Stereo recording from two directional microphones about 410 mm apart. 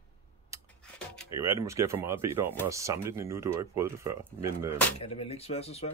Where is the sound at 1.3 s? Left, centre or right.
Centre.